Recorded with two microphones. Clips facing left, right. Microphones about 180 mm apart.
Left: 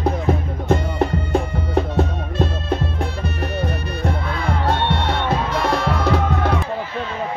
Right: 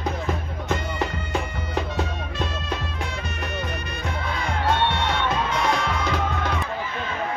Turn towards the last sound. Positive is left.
turn(degrees=65)  # may be behind; listen again after turning